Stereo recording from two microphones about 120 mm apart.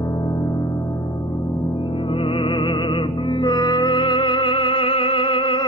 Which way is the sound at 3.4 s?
35° left (ahead or behind).